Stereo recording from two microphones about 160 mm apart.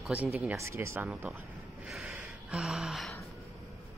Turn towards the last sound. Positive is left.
turn(degrees=0)  # may be behind; listen again after turning